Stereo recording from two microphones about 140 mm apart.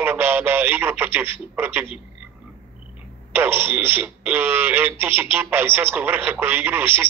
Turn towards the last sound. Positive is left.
turn(degrees=-15)  # may be behind; listen again after turning